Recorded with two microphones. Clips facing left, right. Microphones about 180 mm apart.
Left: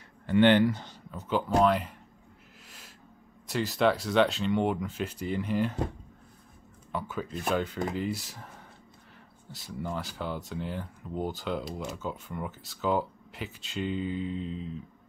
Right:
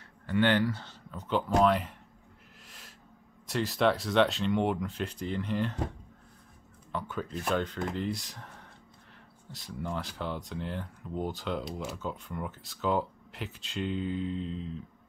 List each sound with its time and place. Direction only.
0.3 s speech: 20° left (ahead or behind)
1.1 s speech: 5° left (ahead or behind)
3.4 s speech: centre (ahead or behind)
6.9 s speech: 5° left (ahead or behind)